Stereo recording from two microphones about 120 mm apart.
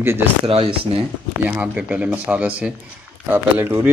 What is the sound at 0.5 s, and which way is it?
Speech, 50° right (ahead or behind).